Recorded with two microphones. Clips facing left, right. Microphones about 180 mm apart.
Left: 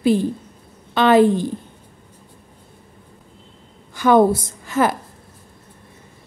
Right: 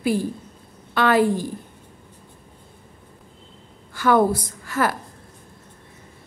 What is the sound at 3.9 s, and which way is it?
A woman's voice, 20° left (ahead or behind).